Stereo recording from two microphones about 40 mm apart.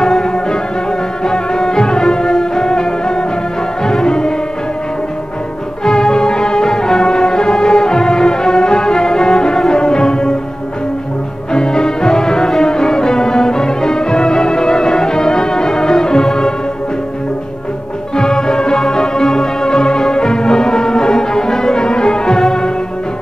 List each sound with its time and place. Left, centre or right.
0.0 s music: centre
5.9 s music: centre
11.5 s music: centre
18.1 s music: centre